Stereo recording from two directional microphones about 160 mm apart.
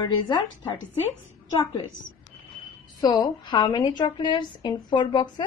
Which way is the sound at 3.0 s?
25° left (ahead or behind).